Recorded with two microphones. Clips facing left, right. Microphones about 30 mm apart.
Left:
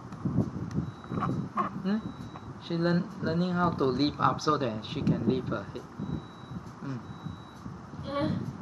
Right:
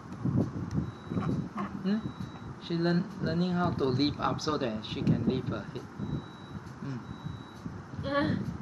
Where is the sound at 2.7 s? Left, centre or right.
Centre.